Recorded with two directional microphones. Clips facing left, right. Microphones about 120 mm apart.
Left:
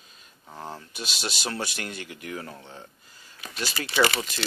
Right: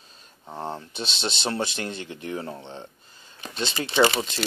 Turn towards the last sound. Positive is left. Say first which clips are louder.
# right 3 dB
turn(degrees=-25)  # may be behind; listen again after turning